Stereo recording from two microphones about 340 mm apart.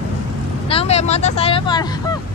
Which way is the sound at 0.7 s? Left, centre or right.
Centre.